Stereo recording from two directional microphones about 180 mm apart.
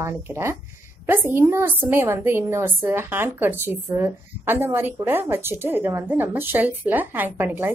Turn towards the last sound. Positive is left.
turn(degrees=-10)  # may be behind; listen again after turning